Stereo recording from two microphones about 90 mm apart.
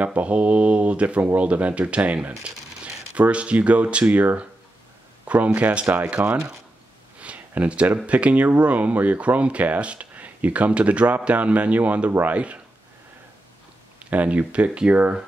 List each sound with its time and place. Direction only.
0.0 s speech: 15° right (ahead or behind)
5.2 s a sound: 15° right (ahead or behind)
5.6 s speech: 15° right (ahead or behind)
7.2 s a sound: 15° right (ahead or behind)
8.1 s speech: 15° right (ahead or behind)
14.1 s speech: 15° right (ahead or behind)